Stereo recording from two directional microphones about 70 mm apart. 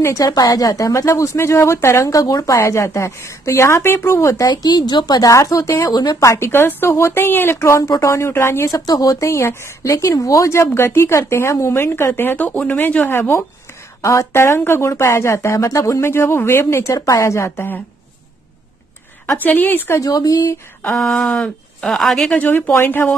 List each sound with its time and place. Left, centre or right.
0.2 s a woman's voice: left
2.5 s a woman's voice: left
4.5 s a woman's voice: left
5.3 s a woman's voice: left
5.9 s speech: left
6.1 s a woman's voice: left
8.6 s speech: left
14.3 s speech: left
16.9 s a woman's voice: left
19.3 s a woman's voice: left
20.0 s speech: left
21.1 s speech: centre
21.8 s a woman's voice: centre
22.3 s a woman's voice: left